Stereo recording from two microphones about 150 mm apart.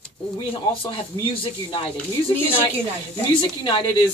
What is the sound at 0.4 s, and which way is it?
Speech, 35° left (ahead or behind).